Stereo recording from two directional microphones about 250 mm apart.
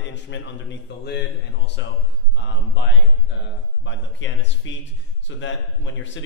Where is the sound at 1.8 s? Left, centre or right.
Left.